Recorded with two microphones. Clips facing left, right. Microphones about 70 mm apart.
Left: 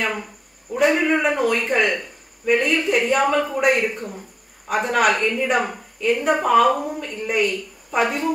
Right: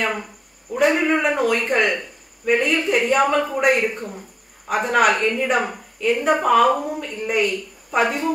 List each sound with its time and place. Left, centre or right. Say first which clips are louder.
0.0 s a woman's voice: right 1 dB; centre